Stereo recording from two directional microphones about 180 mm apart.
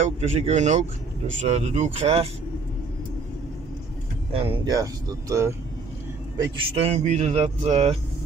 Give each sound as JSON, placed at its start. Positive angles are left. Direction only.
{"t": 0.0, "sound": "speech", "side_deg": -40}
{"t": 4.3, "sound": "speech", "side_deg": -30}
{"t": 6.7, "sound": "speech", "side_deg": -35}